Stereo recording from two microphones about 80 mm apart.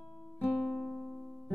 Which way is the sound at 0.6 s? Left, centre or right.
Centre.